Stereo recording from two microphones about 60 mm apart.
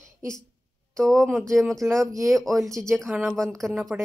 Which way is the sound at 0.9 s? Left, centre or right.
Centre.